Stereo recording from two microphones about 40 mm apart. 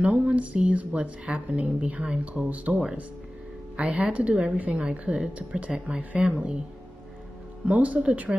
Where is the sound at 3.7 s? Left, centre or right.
Right.